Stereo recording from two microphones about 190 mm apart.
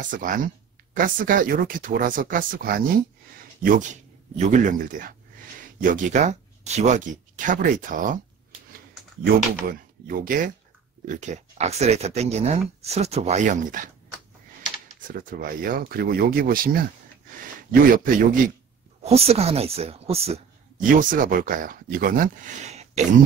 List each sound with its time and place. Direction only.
0.0 s speech: 45° right (ahead or behind)
15.0 s speech: 45° right (ahead or behind)
17.8 s speech: 45° right (ahead or behind)
19.0 s speech: 30° right (ahead or behind)
20.8 s speech: 45° right (ahead or behind)